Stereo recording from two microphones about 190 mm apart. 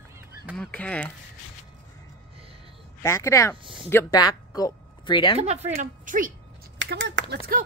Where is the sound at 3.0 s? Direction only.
15° left (ahead or behind).